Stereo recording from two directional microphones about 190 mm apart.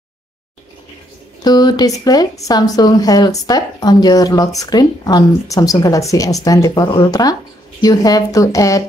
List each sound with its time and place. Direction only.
1.4 s speech: 20° left (ahead or behind)